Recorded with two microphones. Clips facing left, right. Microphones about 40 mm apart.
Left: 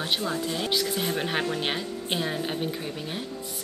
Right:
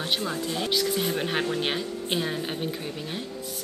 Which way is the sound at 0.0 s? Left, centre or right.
Centre.